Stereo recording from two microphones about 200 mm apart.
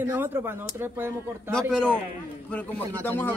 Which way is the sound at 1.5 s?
5° left (ahead or behind).